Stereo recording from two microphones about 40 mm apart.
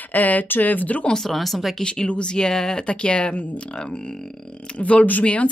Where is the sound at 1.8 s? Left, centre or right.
Left.